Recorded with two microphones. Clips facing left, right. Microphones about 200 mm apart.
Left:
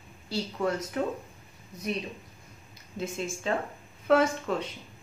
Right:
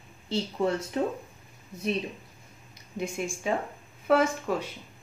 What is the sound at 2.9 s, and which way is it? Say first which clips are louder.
Speech: right 1 dB; 15° right (ahead or behind).